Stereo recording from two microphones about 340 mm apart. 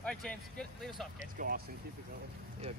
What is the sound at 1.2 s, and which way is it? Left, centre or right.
Speech, right.